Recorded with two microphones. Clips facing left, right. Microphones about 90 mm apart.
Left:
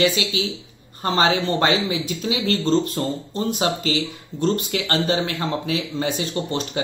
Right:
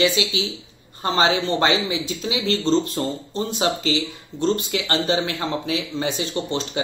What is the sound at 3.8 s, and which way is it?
Speech, 30° right (ahead or behind).